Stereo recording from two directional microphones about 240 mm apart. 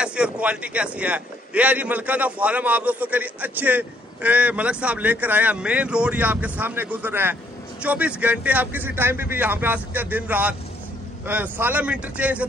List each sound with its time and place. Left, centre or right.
0.0 s speech: centre